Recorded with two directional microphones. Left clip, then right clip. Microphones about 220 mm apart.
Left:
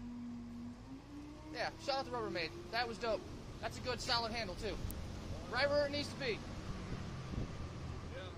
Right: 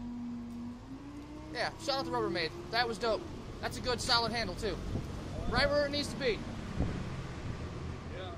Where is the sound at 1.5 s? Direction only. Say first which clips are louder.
Right 5 dB; 15° right (ahead or behind).